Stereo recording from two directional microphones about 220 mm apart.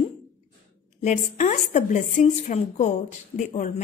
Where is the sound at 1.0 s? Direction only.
35° left (ahead or behind).